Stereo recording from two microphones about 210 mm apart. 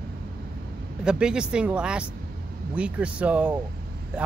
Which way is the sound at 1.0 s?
5° right (ahead or behind).